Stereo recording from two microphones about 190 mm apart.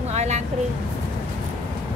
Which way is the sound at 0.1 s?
35° right (ahead or behind).